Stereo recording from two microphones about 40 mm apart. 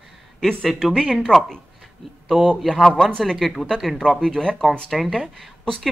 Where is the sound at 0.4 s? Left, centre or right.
Centre.